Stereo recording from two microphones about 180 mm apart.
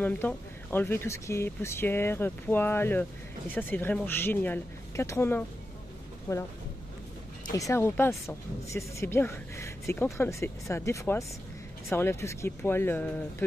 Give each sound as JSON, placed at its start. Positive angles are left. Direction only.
{"t": 0.0, "sound": "speech", "side_deg": 10}
{"t": 7.5, "sound": "speech", "side_deg": 15}